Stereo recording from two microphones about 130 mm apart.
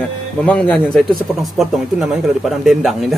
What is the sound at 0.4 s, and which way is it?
Speech, 10° left (ahead or behind).